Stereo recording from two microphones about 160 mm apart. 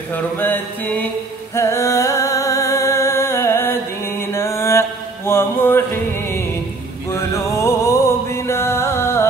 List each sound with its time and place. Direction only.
0.1 s chant: 10° left (ahead or behind)
1.5 s music: 15° left (ahead or behind)